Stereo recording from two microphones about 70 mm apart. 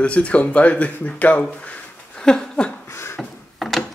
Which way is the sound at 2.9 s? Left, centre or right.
Left.